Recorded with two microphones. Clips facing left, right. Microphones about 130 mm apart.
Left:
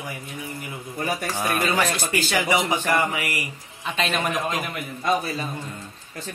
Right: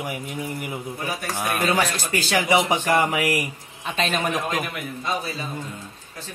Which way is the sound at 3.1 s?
80° right.